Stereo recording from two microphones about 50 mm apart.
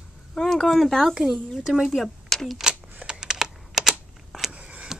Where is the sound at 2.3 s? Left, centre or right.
Centre.